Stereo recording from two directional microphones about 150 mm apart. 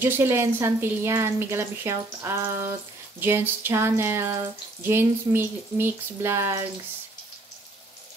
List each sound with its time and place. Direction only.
0.0 s speech: 15° right (ahead or behind)